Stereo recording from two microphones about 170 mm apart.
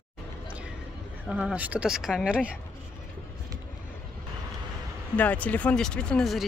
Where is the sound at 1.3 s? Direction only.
5° right (ahead or behind).